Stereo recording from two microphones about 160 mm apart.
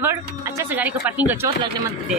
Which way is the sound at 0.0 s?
15° right (ahead or behind).